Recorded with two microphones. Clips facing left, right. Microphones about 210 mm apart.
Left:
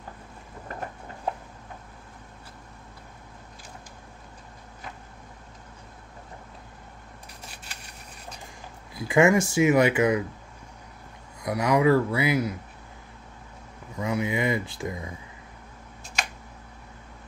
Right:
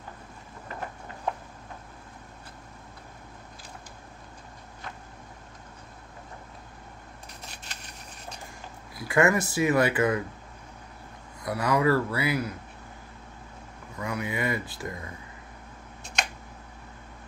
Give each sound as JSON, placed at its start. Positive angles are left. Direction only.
{"t": 8.9, "sound": "a sound", "side_deg": 20}
{"t": 9.5, "sound": "speech", "side_deg": 20}
{"t": 11.4, "sound": "speech", "side_deg": 20}
{"t": 13.9, "sound": "speech", "side_deg": 20}